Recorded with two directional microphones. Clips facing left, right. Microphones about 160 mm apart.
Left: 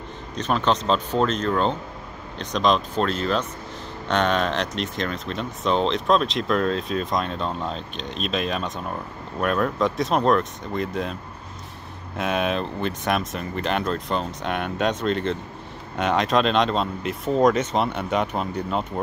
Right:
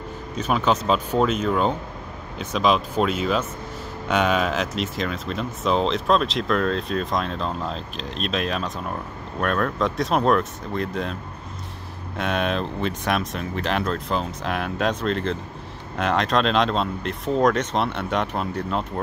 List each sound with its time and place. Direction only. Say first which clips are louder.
0.4 s speech: right 1 dB; 5° right (ahead or behind)
12.2 s speech: even; centre (ahead or behind)